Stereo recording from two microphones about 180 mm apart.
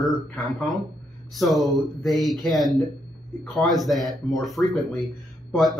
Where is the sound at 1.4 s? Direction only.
Centre (ahead or behind).